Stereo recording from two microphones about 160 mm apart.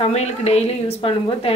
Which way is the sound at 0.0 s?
40° left (ahead or behind).